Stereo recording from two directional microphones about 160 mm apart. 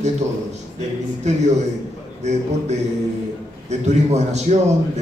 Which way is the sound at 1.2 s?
45° right (ahead or behind).